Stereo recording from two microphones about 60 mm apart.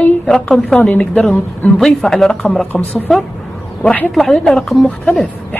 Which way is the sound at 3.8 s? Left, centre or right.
Left.